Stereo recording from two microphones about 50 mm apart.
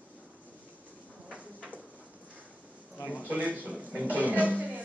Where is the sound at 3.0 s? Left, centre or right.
Left.